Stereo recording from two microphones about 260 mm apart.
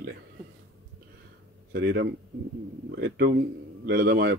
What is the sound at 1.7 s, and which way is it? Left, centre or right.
Speech, right.